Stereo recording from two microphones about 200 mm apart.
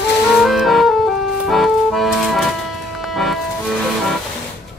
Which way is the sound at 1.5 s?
Centre (ahead or behind).